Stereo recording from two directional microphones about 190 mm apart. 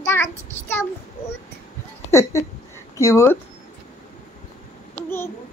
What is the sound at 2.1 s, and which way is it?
A child's voice, 15° left (ahead or behind).